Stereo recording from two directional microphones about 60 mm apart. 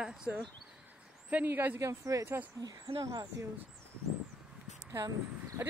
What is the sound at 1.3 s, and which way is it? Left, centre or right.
Speech, right.